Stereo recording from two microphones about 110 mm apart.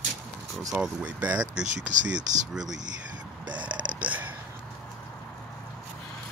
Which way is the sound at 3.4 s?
45° right (ahead or behind).